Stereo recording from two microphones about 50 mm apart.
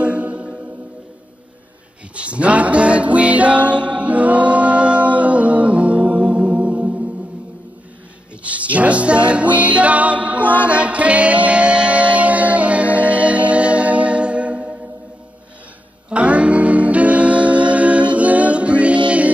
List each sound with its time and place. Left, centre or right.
0.0 s music: right
2.1 s music: right
8.5 s music: right
10.4 s music: left
10.7 s music: right
16.1 s music: right